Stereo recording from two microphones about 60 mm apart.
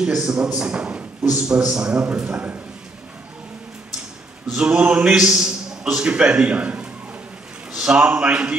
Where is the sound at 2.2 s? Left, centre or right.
Right.